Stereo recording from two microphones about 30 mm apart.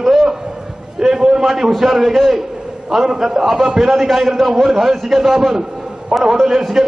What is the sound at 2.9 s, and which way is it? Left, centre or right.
A man's voice, centre.